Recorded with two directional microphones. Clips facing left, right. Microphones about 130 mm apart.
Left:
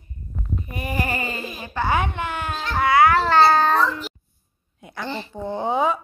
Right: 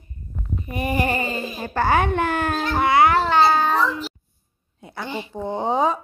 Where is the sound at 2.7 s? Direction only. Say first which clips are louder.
Left 1 dB; 20° right (ahead or behind).